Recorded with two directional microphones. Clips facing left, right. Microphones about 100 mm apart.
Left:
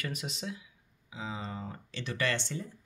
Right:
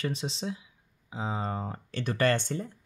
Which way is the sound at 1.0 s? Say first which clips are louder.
Right 6 dB; 40° right (ahead or behind).